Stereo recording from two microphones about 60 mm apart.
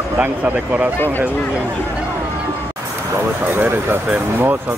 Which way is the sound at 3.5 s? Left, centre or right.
Right.